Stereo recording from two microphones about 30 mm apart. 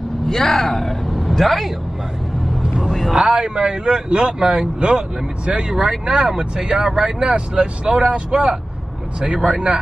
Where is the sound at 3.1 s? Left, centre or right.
Right.